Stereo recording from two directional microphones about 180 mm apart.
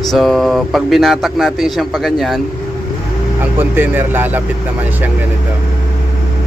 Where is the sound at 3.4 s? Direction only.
10° right (ahead or behind).